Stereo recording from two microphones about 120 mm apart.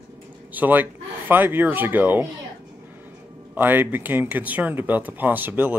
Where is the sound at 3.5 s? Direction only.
15° right (ahead or behind).